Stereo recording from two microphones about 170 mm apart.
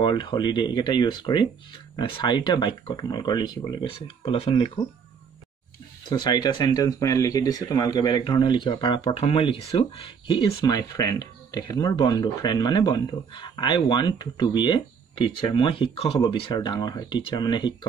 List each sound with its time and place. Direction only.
0.0 s speech: 25° left (ahead or behind)
6.0 s speech: 25° left (ahead or behind)